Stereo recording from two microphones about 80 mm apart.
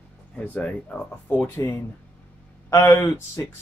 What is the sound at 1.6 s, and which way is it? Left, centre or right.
Speech, left.